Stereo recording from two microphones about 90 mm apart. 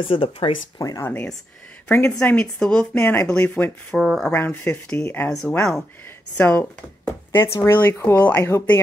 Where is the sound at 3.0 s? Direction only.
25° left (ahead or behind).